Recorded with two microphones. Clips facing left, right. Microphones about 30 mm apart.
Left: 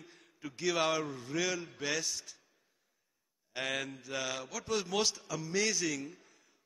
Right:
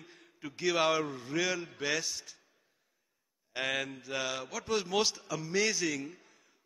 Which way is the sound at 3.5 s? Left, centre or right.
Centre.